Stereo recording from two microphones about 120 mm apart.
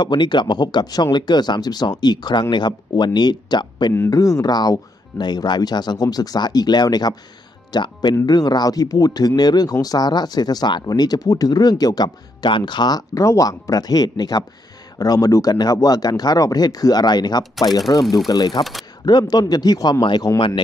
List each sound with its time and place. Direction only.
0.0 s speech: 40° left (ahead or behind)
3.9 s speech: 25° left (ahead or behind)
18.6 s speech: centre (ahead or behind)
19.0 s speech: 35° left (ahead or behind)